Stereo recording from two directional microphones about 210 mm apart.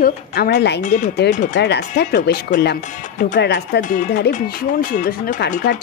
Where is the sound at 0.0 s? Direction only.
50° left (ahead or behind).